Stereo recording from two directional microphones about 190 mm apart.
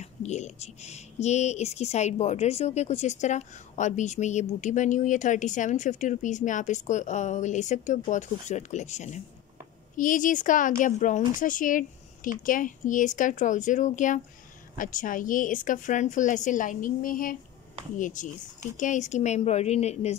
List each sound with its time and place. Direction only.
0.0 s speech: 35° left (ahead or behind)